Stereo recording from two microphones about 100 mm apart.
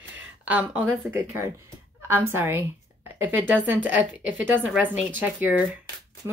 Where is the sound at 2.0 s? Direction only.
20° right (ahead or behind).